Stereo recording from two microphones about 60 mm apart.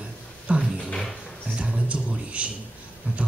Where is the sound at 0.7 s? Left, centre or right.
Centre.